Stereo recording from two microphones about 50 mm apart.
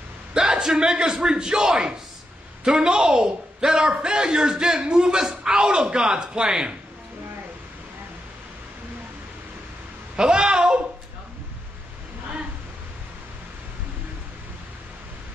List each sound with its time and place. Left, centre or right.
0.3 s a man's voice: centre
10.1 s a woman's voice: centre